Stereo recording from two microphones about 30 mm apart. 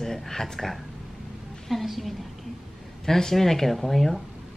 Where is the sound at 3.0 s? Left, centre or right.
Centre.